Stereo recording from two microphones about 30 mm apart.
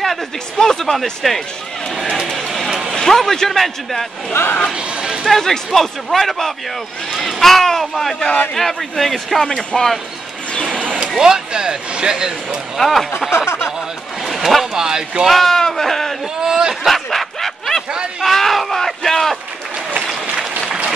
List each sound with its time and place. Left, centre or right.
0.6 s speech: centre
1.2 s speech: centre
2.2 s a sound: centre
3.0 s speech: centre
5.2 s speech: centre
10.8 s vehicle: right
11.1 s speech: centre
12.7 s speech: centre
13.4 s speech: centre
14.2 s a sound: centre
14.7 s speech: centre
15.2 s speech: centre
16.4 s a sound: right
16.8 s a sound: centre